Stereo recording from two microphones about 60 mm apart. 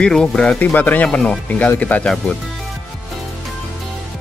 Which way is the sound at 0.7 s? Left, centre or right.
Left.